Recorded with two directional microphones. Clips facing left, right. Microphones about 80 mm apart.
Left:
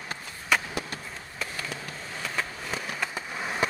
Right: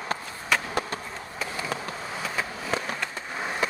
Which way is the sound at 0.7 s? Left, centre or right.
Right.